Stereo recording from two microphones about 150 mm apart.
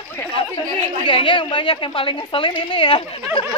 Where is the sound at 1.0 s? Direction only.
35° left (ahead or behind).